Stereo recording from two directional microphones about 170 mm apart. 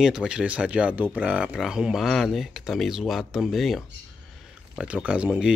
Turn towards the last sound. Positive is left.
turn(degrees=-5)  # may be behind; listen again after turning